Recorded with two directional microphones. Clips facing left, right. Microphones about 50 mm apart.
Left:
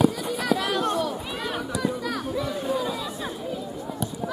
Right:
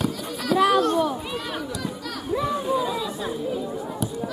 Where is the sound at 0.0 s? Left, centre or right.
Centre.